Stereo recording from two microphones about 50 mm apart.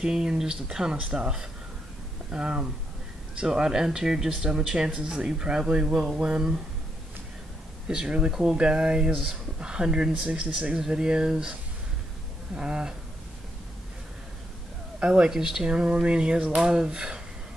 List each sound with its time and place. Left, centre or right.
0.0 s speech: centre
8.1 s speech: centre
12.5 s speech: centre
15.0 s speech: right